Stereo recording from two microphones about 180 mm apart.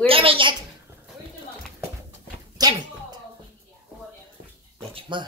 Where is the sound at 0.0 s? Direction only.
30° right (ahead or behind).